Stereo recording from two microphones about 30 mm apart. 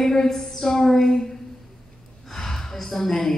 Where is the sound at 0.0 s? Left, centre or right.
Centre.